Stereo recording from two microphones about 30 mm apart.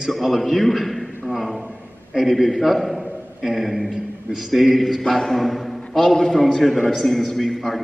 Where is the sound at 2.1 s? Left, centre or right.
Centre.